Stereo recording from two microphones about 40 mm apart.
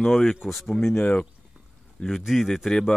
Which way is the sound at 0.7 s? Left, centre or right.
Centre.